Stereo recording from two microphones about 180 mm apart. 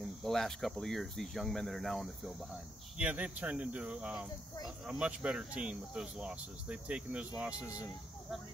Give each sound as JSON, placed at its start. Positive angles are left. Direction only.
{"t": 0.2, "sound": "speech", "side_deg": 0}